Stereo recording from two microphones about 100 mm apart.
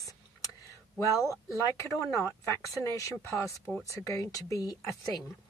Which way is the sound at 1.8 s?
30° left (ahead or behind).